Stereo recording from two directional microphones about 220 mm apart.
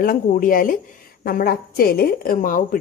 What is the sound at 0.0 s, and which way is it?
A woman's voice, 40° left (ahead or behind).